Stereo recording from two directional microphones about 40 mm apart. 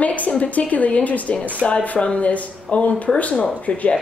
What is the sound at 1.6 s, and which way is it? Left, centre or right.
A woman's voice, left.